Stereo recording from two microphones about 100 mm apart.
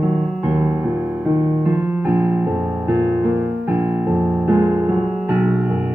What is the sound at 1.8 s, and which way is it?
Music, 15° right (ahead or behind).